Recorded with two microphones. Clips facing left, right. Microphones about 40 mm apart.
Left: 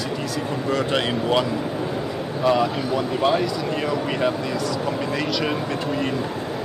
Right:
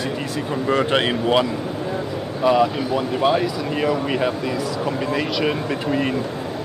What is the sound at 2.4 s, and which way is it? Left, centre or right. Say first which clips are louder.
Speech: right 3 dB; centre.